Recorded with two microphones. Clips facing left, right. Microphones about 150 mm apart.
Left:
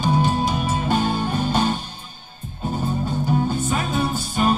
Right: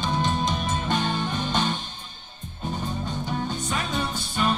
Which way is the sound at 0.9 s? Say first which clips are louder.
Left 5 dB; 40° left (ahead or behind).